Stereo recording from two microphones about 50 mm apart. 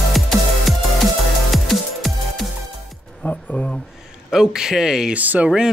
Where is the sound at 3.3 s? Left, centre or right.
Centre.